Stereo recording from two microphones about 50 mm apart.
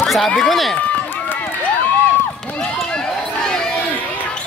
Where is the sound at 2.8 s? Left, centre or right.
Centre.